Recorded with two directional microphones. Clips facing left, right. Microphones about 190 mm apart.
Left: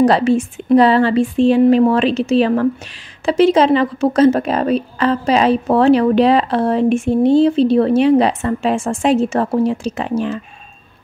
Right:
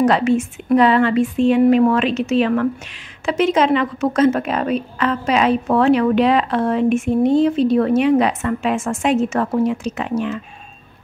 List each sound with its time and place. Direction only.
0.0 s a woman's voice: 35° left (ahead or behind)